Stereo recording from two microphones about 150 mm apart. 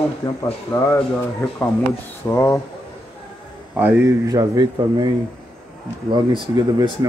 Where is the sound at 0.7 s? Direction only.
30° left (ahead or behind).